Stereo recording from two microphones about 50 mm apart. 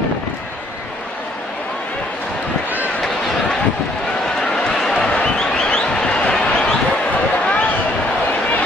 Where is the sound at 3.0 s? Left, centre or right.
Centre.